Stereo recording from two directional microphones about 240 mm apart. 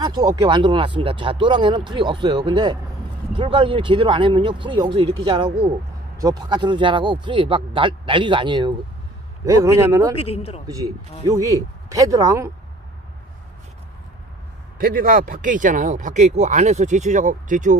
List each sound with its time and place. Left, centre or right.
0.0 s speech: centre
10.2 s speech: left
10.7 s speech: centre
14.8 s speech: right